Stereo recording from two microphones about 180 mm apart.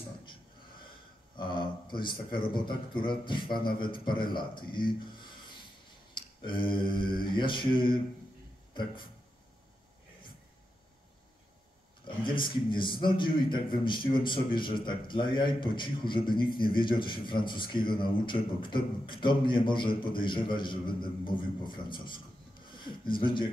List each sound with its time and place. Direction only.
1.3 s a man's voice: 25° left (ahead or behind)
12.0 s a man's voice: 25° left (ahead or behind)